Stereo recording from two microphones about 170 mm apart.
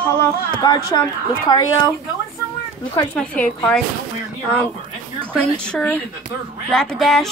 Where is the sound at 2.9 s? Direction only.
10° left (ahead or behind).